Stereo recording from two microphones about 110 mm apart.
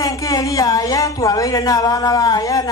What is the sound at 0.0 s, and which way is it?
A woman's voice, 30° left (ahead or behind).